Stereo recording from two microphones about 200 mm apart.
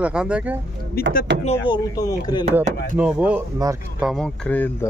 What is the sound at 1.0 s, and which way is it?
Speech, 50° left (ahead or behind).